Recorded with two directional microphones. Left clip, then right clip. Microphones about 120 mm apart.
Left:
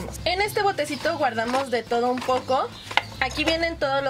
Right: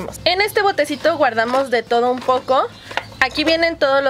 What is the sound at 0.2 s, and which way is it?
Speech, 40° right (ahead or behind).